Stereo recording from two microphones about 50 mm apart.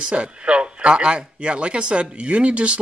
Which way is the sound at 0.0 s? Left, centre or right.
Right.